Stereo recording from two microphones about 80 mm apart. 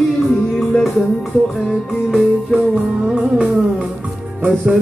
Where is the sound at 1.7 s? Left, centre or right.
Centre.